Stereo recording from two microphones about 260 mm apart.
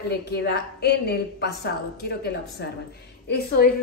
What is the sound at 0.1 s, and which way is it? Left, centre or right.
A woman's voice, left.